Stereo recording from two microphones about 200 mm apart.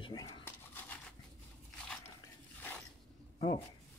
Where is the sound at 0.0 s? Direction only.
20° left (ahead or behind).